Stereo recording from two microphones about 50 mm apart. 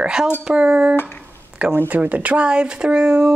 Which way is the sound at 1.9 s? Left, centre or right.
Right.